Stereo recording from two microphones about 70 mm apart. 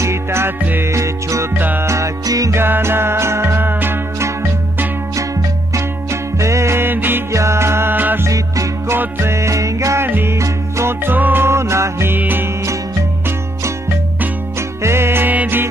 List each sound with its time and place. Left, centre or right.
0.0 s music: right
1.6 s music: right
1.9 s music: right
2.5 s music: right
6.3 s music: right
7.3 s music: right
8.3 s music: right
8.9 s music: right
10.0 s music: right
10.4 s music: right
11.1 s music: right
14.8 s music: right